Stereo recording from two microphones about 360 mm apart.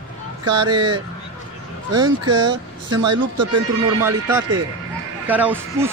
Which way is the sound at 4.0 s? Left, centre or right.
Centre.